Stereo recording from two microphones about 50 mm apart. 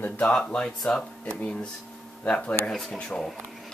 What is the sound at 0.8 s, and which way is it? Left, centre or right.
Speech, left.